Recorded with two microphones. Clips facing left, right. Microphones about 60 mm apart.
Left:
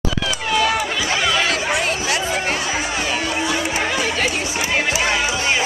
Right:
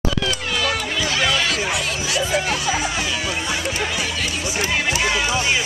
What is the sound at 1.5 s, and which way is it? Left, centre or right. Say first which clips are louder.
Music: left 3 dB; left.